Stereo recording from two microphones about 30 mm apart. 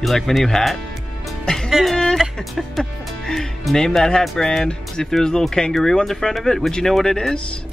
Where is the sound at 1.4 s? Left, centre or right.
Left.